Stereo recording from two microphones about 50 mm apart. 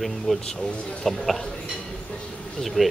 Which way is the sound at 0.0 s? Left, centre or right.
Centre.